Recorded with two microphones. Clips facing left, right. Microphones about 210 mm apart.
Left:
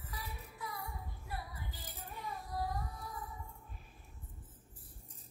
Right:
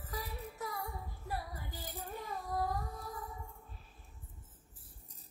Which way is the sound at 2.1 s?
45° right (ahead or behind).